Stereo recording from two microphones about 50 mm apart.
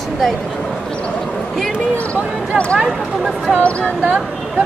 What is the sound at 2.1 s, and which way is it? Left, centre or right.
Speech, left.